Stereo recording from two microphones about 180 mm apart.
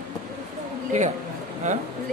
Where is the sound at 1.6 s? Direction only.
45° right (ahead or behind).